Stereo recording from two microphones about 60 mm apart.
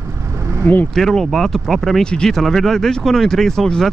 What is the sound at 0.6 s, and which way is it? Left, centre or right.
Speech, left.